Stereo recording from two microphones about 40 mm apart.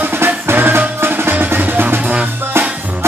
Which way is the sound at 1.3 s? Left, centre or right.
Right.